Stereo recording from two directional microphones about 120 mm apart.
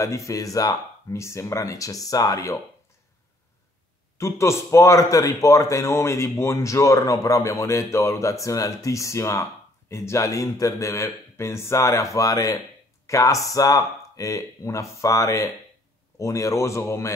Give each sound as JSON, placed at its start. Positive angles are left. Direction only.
{"t": 0.0, "sound": "speech", "side_deg": 25}
{"t": 4.2, "sound": "speech", "side_deg": 25}